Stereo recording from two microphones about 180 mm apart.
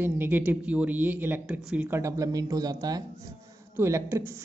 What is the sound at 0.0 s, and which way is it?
Speech, 10° right (ahead or behind).